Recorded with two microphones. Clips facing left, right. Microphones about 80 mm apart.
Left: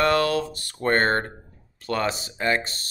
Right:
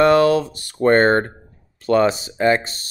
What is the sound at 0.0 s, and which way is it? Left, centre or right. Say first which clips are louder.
Speech: right 7 dB; centre.